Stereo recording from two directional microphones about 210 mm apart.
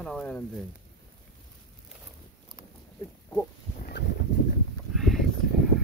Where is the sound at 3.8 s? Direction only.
50° left (ahead or behind).